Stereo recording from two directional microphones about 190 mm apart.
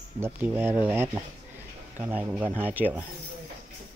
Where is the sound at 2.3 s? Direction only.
10° right (ahead or behind).